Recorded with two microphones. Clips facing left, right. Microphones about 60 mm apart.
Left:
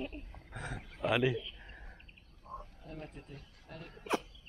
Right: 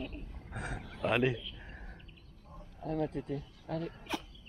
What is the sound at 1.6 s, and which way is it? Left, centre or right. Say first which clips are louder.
Whispering: right 3 dB; centre.